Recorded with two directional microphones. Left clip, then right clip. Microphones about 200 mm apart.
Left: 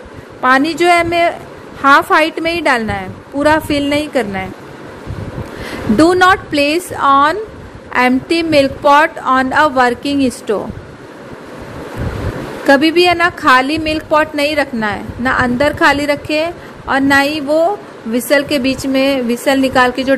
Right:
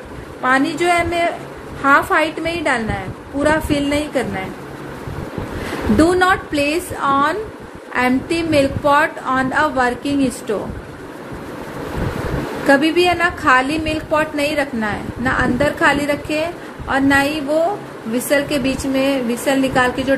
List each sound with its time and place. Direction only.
0.4 s a woman's voice: 45° left (ahead or behind)
5.9 s a woman's voice: 40° left (ahead or behind)
12.6 s a woman's voice: 40° left (ahead or behind)